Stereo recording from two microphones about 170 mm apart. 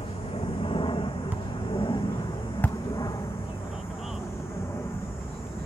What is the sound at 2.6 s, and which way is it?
Basketball bounce, 20° left (ahead or behind).